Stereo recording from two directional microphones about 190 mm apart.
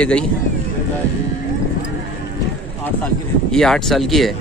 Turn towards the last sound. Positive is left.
turn(degrees=0)  # may be behind; listen again after turning